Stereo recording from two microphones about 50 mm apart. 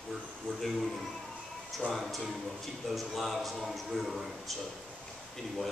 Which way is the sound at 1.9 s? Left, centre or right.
Centre.